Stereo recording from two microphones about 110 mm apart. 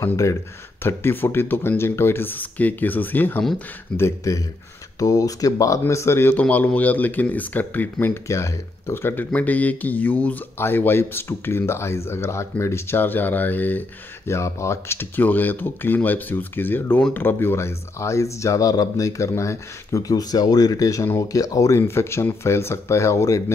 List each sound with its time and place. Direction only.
0.0 s speech: 30° left (ahead or behind)